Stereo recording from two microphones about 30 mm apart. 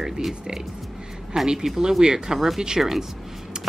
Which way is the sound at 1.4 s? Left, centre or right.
Centre.